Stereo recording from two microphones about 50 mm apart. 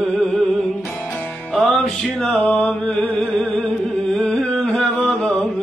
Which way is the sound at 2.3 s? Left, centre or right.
Left.